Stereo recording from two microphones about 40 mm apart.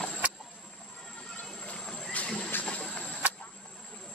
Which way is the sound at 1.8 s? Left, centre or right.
Centre.